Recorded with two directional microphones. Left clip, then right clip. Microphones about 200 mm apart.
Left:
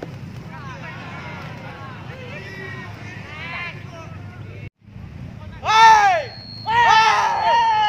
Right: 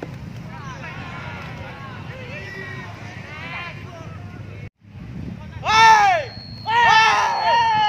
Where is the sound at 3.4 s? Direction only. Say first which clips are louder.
Left 2 dB; 40° left (ahead or behind).